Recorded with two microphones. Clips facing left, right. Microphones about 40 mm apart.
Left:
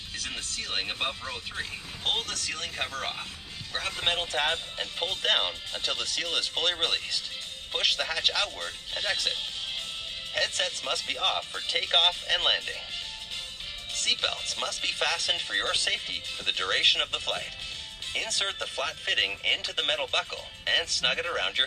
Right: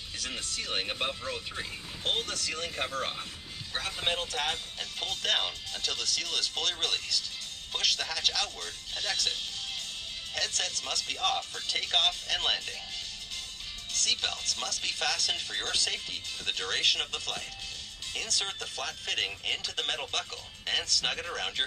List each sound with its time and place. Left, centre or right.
0.2 s speech: centre
3.0 s speech: centre
13.9 s speech: left